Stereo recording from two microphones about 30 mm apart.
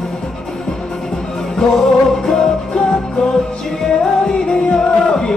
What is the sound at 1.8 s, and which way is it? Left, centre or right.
Music, centre.